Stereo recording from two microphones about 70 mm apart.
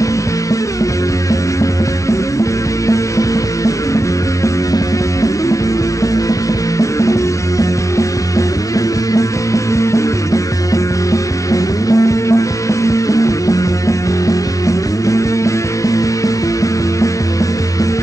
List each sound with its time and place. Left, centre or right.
1.3 s music: left
6.8 s music: left